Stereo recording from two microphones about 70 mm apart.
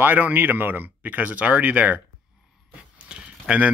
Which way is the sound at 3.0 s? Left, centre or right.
Centre.